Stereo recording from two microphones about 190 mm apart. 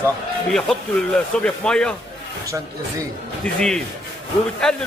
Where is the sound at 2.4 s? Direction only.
15° right (ahead or behind).